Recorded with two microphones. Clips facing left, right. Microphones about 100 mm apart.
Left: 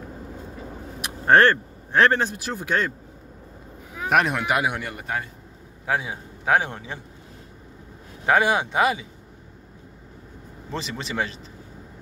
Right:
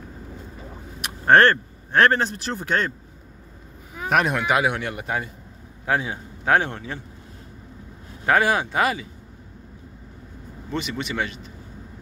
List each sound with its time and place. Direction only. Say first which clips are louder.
1.2 s speech: right 1 dB; 10° left (ahead or behind)
3.9 s a man's voice: even; centre (ahead or behind)
8.3 s speech: even; 20° left (ahead or behind)
10.7 s speech: right 3 dB; 30° left (ahead or behind)